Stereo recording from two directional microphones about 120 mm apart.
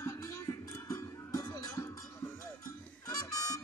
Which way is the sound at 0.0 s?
25° left (ahead or behind).